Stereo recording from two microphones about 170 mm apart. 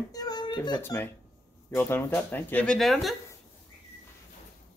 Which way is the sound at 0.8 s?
15° left (ahead or behind).